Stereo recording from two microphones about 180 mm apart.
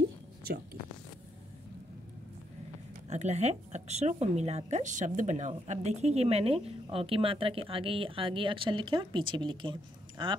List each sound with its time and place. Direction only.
3.1 s speech: 40° right (ahead or behind)